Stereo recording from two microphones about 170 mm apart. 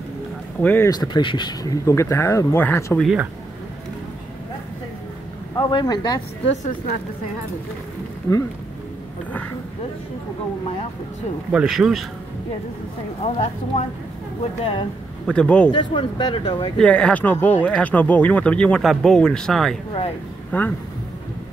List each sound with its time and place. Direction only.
0.6 s speech: 10° left (ahead or behind)
0.8 s speech: 25° left (ahead or behind)
5.6 s speech: 25° left (ahead or behind)
6.4 s a woman's voice: 40° left (ahead or behind)
11.5 s speech: 5° right (ahead or behind)
13.2 s speech: 40° left (ahead or behind)
15.2 s speech: 5° left (ahead or behind)
15.7 s speech: 30° left (ahead or behind)
16.7 s speech: 5° left (ahead or behind)